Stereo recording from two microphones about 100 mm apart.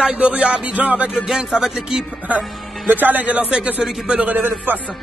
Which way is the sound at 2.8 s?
20° right (ahead or behind).